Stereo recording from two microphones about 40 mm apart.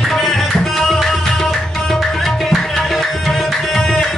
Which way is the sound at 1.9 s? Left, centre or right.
Centre.